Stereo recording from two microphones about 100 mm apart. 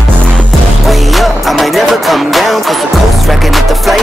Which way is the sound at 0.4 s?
Centre (ahead or behind).